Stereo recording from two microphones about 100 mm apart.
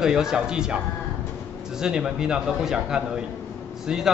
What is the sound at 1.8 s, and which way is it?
A man's voice, 5° right (ahead or behind).